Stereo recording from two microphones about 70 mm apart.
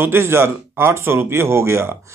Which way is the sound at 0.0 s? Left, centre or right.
Right.